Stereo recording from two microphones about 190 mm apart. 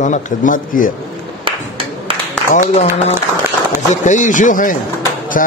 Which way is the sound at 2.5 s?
40° left (ahead or behind).